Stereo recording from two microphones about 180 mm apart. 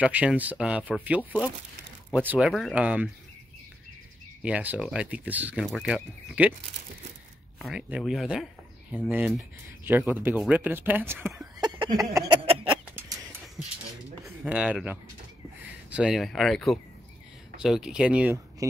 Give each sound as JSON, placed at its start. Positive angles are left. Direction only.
{"t": 0.0, "sound": "speech", "side_deg": -5}
{"t": 4.4, "sound": "speech", "side_deg": -5}
{"t": 7.5, "sound": "speech", "side_deg": -5}
{"t": 11.7, "sound": "a sound", "side_deg": -25}
{"t": 14.2, "sound": "speech", "side_deg": -5}